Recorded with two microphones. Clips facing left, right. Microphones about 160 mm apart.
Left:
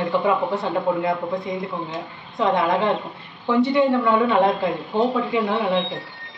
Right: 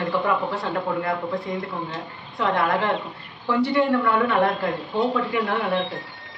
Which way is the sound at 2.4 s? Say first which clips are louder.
Left 3 dB; 20° left (ahead or behind).